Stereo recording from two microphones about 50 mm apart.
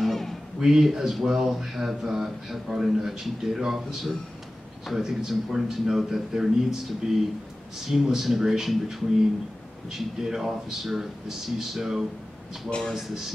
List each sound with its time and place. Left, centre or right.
0.0 s a sound: centre
0.6 s speech: centre
12.6 s speech: centre
12.9 s speech: centre